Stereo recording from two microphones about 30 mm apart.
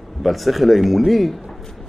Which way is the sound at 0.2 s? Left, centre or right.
Centre.